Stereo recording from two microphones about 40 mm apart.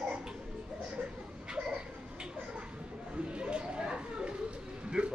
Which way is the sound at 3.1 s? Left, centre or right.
Right.